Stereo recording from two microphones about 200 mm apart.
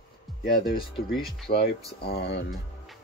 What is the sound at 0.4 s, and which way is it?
Speech, 45° left (ahead or behind).